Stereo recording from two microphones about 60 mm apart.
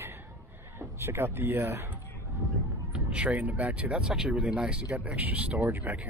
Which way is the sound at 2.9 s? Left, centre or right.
Right.